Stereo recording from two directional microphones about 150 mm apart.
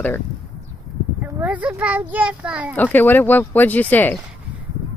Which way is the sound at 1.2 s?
10° right (ahead or behind).